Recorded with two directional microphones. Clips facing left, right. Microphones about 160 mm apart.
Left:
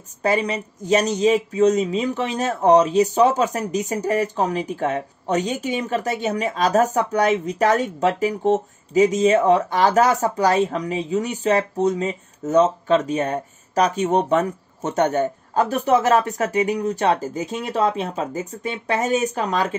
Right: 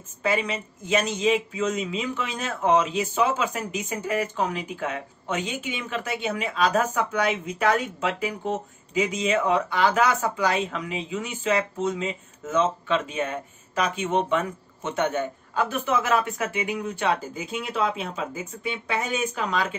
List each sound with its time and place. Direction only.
0.2 s speech: 40° left (ahead or behind)